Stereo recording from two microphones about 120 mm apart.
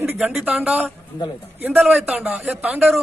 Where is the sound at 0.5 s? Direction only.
15° right (ahead or behind).